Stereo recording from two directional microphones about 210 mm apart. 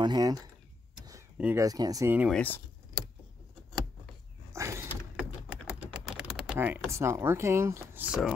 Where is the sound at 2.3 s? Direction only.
5° left (ahead or behind).